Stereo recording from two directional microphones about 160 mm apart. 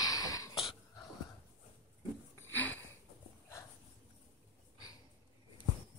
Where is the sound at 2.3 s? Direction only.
10° left (ahead or behind).